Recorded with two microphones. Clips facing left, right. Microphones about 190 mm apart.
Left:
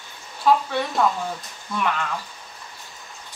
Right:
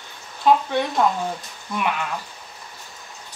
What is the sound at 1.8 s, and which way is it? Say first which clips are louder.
Speech: even; 10° right (ahead or behind).